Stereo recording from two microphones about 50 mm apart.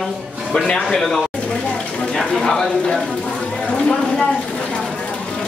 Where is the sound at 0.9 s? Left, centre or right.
Centre.